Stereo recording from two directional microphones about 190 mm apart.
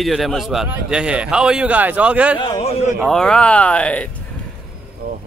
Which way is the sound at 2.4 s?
30° left (ahead or behind).